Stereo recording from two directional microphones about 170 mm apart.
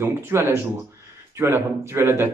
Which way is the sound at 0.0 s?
15° right (ahead or behind).